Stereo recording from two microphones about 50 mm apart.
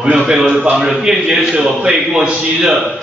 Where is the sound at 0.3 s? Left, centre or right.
Centre.